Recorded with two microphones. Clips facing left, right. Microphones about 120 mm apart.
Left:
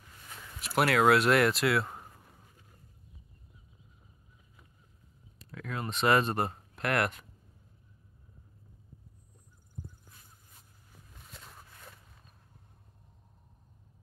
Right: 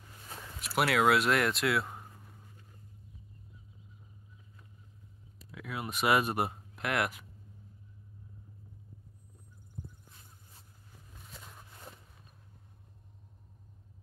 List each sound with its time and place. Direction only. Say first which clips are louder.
0.6 s speech: left 2 dB; centre (ahead or behind)
5.4 s speech: left 2 dB; 10° right (ahead or behind)
11.3 s walk: even; centre (ahead or behind)
11.7 s a sound: right 3 dB; 25° right (ahead or behind)